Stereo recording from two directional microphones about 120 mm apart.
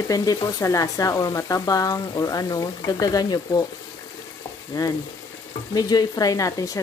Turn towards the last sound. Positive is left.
turn(degrees=30)  # may be behind; listen again after turning